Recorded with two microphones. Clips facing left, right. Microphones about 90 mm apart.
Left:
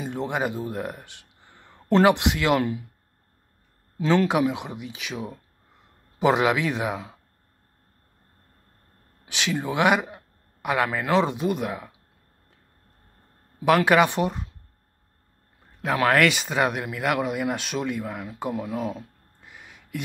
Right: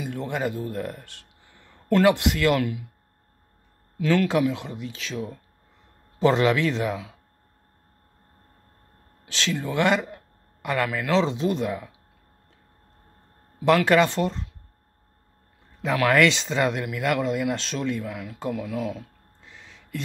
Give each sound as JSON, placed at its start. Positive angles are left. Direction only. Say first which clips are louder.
{"t": 0.0, "sound": "a man's voice", "louder": "left 1 dB", "side_deg": 20}
{"t": 2.6, "sound": "speech", "louder": "left 1 dB", "side_deg": 35}
{"t": 4.0, "sound": "a man's voice", "louder": "left 1 dB", "side_deg": 25}
{"t": 9.3, "sound": "a man's voice", "louder": "left 1 dB", "side_deg": 15}
{"t": 13.7, "sound": "a man's voice", "louder": "even", "side_deg": 15}
{"t": 16.1, "sound": "a man's voice", "louder": "right 1 dB", "side_deg": 10}
{"t": 19.4, "sound": "a sound", "louder": "left 1 dB", "side_deg": 15}